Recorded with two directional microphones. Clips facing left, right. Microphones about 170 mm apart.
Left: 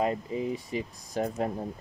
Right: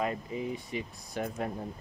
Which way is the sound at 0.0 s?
30° left (ahead or behind).